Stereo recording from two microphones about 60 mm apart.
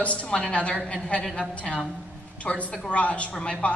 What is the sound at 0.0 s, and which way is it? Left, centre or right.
A woman's voice, left.